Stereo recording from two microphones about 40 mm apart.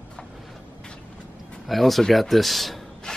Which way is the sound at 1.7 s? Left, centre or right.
Centre.